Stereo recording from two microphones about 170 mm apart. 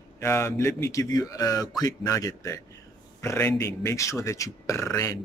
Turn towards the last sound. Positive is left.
turn(degrees=15)  # may be behind; listen again after turning